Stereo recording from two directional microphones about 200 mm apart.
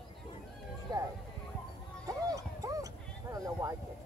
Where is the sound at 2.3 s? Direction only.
15° right (ahead or behind).